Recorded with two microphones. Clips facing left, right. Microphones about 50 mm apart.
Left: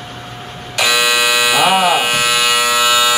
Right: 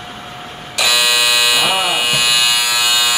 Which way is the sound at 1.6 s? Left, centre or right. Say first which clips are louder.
Left 4 dB; centre.